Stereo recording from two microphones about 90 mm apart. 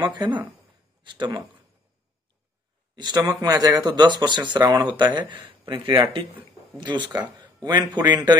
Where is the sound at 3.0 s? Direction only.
55° right (ahead or behind).